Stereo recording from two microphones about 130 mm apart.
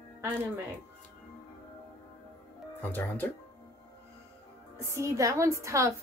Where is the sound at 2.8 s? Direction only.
15° left (ahead or behind).